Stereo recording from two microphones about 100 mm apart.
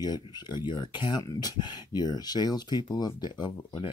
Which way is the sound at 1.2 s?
40° left (ahead or behind).